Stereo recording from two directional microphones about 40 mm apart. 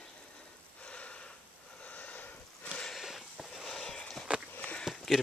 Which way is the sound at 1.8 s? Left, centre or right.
Left.